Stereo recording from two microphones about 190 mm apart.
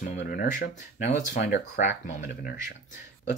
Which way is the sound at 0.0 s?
45° left (ahead or behind).